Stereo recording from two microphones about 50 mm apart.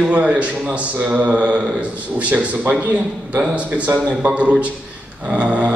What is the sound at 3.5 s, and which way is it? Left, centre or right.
A man's voice, right.